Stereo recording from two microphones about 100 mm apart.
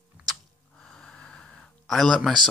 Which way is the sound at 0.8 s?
5° left (ahead or behind).